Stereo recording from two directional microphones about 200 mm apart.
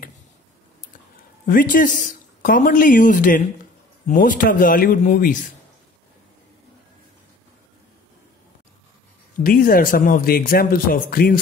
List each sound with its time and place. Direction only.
1.4 s speech: 45° left (ahead or behind)
9.4 s speech: 45° left (ahead or behind)